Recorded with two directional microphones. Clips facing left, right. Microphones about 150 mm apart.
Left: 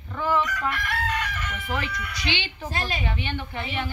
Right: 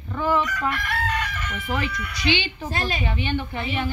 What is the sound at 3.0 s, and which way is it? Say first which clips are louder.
Speech: right 4 dB; 10° right (ahead or behind).